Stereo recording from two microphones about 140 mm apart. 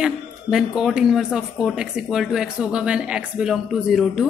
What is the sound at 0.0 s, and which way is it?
A woman's voice, 5° right (ahead or behind).